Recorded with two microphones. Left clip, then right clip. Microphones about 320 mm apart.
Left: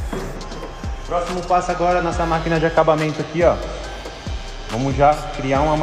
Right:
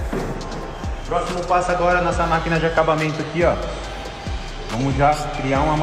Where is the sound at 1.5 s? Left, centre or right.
Left.